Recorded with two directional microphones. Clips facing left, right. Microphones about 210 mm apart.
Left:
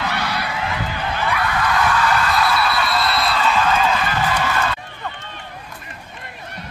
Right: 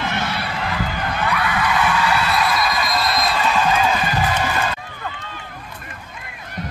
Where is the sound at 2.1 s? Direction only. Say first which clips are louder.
Left 1 dB; 10° right (ahead or behind).